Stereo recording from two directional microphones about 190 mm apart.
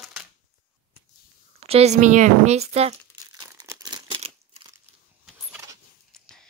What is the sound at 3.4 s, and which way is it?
Crumpling, 20° right (ahead or behind).